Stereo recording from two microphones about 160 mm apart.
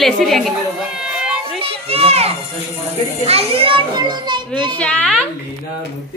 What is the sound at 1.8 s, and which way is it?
A child's voice, 40° right (ahead or behind).